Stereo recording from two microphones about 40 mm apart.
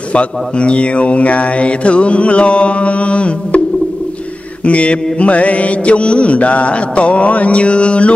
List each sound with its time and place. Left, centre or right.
0.1 s mantra: left
4.6 s mantra: left